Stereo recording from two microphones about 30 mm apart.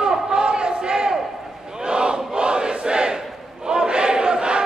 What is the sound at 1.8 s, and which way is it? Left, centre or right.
Crowd, right.